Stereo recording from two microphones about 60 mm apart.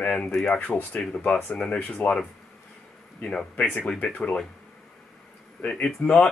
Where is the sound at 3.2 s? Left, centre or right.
Centre.